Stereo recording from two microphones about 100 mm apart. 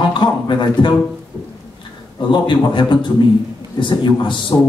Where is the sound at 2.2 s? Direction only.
55° left (ahead or behind).